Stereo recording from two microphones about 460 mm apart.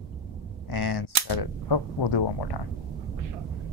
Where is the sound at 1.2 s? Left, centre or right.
Left.